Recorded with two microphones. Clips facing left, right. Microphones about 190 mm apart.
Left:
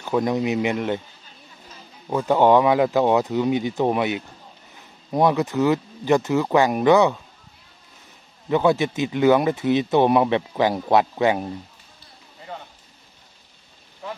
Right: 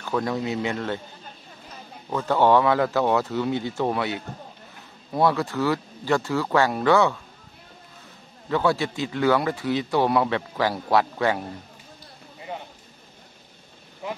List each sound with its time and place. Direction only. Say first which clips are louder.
0.0 s speech: left 4 dB; 15° left (ahead or behind)
2.0 s speech: left 3 dB; 15° left (ahead or behind)
8.5 s speech: left 4 dB; 20° left (ahead or behind)
12.5 s a sound: right 2 dB; 15° right (ahead or behind)